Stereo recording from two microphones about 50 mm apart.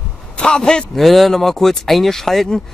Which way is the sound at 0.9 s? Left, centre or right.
Centre.